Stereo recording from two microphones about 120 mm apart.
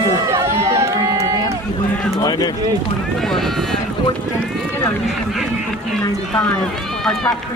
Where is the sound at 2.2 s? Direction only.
35° left (ahead or behind).